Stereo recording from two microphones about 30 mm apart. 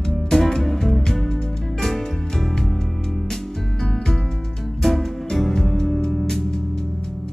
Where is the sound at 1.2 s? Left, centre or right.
Left.